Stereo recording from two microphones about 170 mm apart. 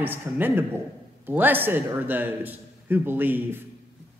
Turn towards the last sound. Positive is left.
turn(degrees=-10)  # may be behind; listen again after turning